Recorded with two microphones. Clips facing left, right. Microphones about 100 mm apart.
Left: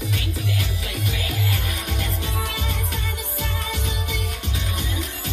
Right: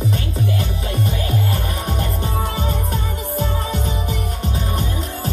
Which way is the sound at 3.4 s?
35° right (ahead or behind).